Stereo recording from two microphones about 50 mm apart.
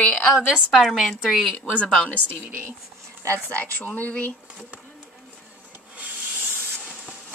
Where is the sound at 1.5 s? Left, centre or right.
Left.